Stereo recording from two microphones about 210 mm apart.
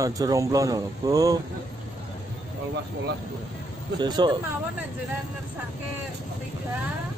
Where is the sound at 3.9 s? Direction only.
20° right (ahead or behind).